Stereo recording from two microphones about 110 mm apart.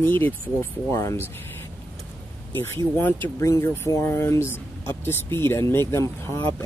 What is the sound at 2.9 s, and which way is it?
Speech, 20° left (ahead or behind).